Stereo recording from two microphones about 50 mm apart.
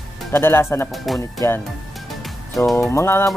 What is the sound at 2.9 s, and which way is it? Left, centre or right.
Speech, left.